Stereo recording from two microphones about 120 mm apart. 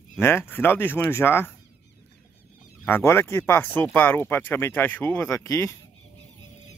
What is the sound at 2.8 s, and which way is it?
Speech, 20° left (ahead or behind).